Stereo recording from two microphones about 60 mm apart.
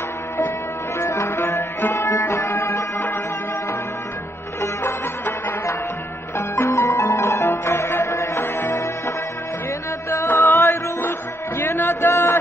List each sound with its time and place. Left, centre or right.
0.9 s music: left
2.5 s music: left
6.3 s music: left
10.2 s music: left